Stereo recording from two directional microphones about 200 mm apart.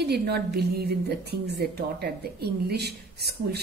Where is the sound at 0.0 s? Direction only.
55° right (ahead or behind).